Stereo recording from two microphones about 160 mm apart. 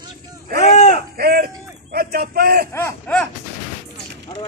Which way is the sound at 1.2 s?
70° right (ahead or behind).